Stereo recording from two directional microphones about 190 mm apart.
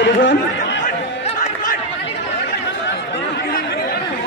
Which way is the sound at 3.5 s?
55° left (ahead or behind).